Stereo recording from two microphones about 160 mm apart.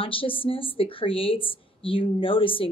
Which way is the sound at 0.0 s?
35° left (ahead or behind).